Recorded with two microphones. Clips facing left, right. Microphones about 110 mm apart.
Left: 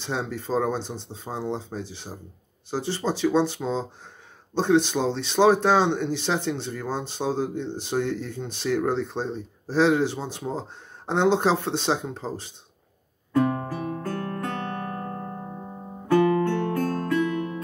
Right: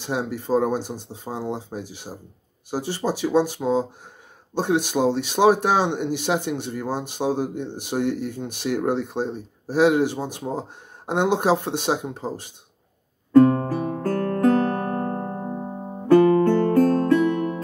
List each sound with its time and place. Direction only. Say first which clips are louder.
0.0 s speech: right 3 dB; 10° right (ahead or behind)
13.4 s music: right 8 dB; 45° right (ahead or behind)